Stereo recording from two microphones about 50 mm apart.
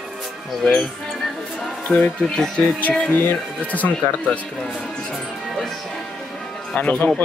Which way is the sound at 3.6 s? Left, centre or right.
Left.